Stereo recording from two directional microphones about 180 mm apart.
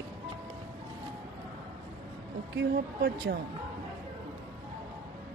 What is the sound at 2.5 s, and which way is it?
Speech, 65° right (ahead or behind).